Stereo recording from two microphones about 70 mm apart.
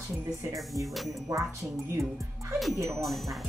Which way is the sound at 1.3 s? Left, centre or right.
Right.